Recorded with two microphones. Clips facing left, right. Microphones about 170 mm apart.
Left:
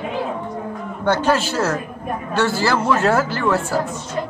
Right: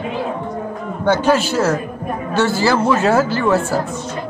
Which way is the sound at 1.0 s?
Centre (ahead or behind).